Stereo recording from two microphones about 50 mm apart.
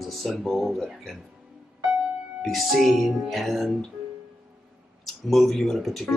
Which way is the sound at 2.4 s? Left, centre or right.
Centre.